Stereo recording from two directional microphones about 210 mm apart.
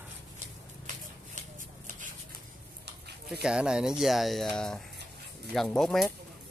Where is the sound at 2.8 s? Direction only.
50° right (ahead or behind).